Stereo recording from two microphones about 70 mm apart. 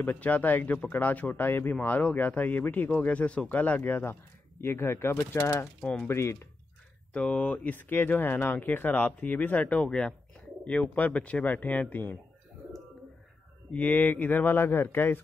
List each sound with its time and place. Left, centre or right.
0.0 s speech: left
7.2 s speech: centre
13.7 s speech: left